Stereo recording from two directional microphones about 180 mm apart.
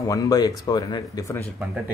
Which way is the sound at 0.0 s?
20° left (ahead or behind).